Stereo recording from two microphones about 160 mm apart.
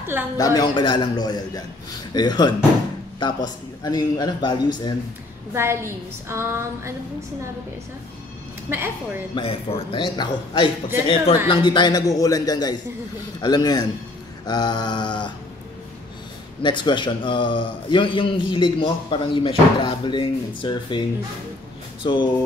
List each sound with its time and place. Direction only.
0.4 s a man's voice: 25° left (ahead or behind)
5.5 s a woman's voice: 15° right (ahead or behind)
8.6 s a woman's voice: 15° right (ahead or behind)
9.3 s a man's voice: 35° left (ahead or behind)
16.6 s a man's voice: 30° left (ahead or behind)
22.0 s speech: 30° left (ahead or behind)